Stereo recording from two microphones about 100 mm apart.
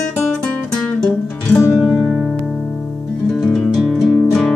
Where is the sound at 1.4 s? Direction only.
25° left (ahead or behind).